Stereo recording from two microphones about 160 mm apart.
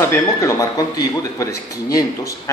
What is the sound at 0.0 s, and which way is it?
Speech, 20° left (ahead or behind).